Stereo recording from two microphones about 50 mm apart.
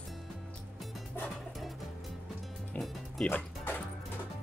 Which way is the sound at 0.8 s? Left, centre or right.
Centre.